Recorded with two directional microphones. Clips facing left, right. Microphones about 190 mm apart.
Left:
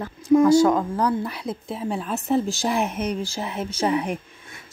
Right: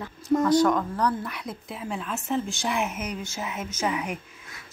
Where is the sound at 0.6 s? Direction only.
25° left (ahead or behind).